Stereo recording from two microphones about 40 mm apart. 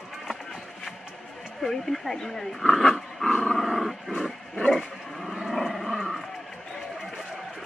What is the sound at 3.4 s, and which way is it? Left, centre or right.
Dog, centre.